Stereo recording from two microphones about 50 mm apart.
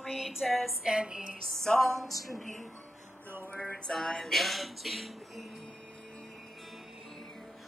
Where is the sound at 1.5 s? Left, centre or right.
Centre.